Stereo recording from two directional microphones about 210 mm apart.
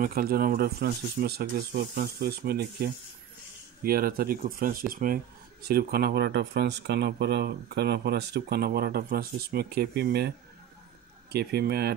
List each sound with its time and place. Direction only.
0.0 s speech: 45° right (ahead or behind)
11.3 s speech: 50° right (ahead or behind)